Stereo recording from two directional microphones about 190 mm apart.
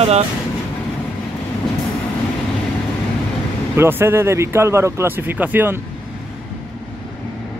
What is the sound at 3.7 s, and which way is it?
Speech, 10° right (ahead or behind).